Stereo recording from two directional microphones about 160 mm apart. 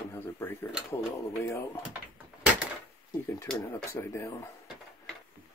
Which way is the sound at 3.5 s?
15° left (ahead or behind).